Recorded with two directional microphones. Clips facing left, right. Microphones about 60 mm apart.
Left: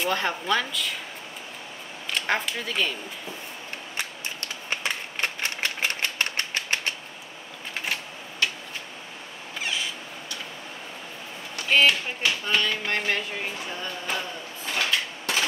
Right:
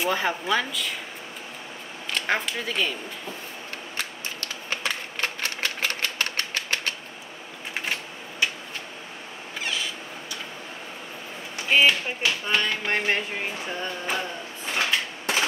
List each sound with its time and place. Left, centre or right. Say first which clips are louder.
0.0 s speech: right 1 dB; centre
2.1 s speech: even; centre
3.9 s typewriter: even; left
7.8 s typewriter: left 1 dB; centre
11.9 s speech: right 1 dB; centre
14.7 s a sound: right 1 dB; right